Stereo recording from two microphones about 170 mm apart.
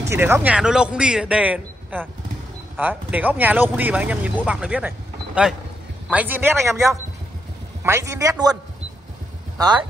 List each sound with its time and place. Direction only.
0.1 s a man's voice: 15° right (ahead or behind)
9.6 s speech: 25° right (ahead or behind)